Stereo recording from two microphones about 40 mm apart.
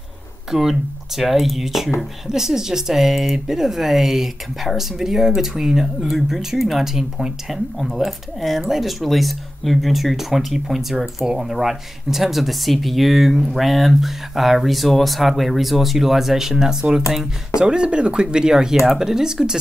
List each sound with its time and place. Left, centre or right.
0.5 s speech: centre
17.6 s speech: right